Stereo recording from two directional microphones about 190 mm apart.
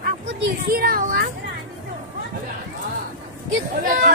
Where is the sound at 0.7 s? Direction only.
50° right (ahead or behind).